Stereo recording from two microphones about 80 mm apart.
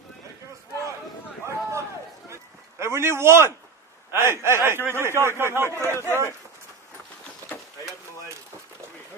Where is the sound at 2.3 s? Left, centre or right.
Right.